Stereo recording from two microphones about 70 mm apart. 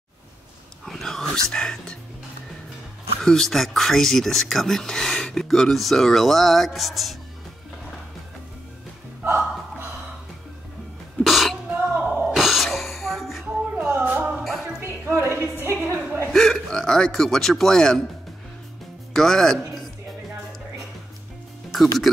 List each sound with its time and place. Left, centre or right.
0.8 s whispering: centre
1.5 s speech: centre
3.2 s speech: centre
9.2 s hiccup: right
11.2 s throat clearing: centre
12.0 s a sound: centre
12.4 s a sound: centre
13.7 s music: right
14.4 s music: centre
14.8 s a sound: right
16.3 s speech: centre
19.1 s speech: centre
21.7 s speech: centre